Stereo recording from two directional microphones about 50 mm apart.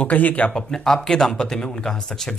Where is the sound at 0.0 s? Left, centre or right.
Left.